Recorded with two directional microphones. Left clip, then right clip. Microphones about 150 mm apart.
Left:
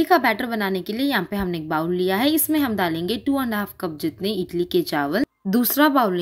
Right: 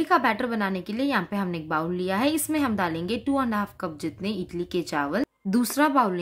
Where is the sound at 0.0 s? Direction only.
15° left (ahead or behind).